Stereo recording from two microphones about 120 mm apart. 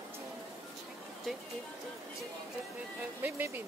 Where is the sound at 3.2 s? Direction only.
20° right (ahead or behind).